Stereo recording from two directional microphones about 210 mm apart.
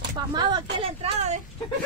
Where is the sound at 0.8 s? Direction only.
30° right (ahead or behind).